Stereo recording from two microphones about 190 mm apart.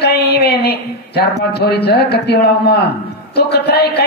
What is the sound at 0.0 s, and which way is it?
A man's voice, 60° left (ahead or behind).